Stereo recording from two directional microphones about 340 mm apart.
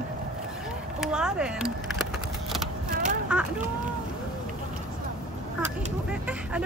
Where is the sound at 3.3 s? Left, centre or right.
Centre.